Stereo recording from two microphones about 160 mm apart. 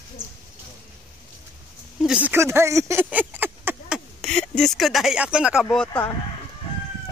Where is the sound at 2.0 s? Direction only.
5° right (ahead or behind).